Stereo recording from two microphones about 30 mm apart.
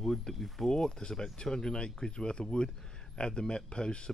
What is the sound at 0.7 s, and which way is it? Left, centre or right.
Speech, left.